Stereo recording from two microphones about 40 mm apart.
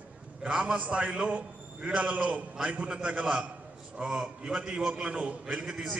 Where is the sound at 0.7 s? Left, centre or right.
Right.